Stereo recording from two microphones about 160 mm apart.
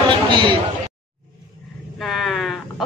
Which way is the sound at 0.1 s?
30° right (ahead or behind).